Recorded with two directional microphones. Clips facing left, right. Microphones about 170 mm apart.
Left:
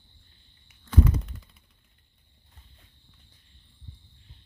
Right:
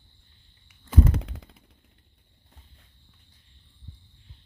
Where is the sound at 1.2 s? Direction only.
90° right.